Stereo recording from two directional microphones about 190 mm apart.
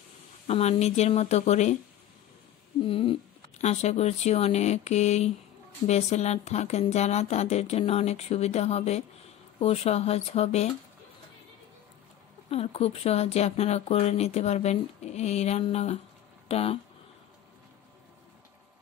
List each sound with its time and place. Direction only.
0.5 s speech: 35° left (ahead or behind)
2.8 s speech: 30° left (ahead or behind)
12.4 s speech: 30° left (ahead or behind)